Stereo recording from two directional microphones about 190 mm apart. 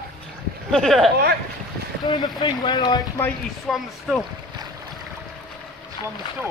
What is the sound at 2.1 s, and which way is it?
Speech, 25° left (ahead or behind).